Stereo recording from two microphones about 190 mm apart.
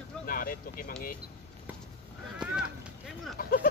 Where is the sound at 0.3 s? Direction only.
50° left (ahead or behind).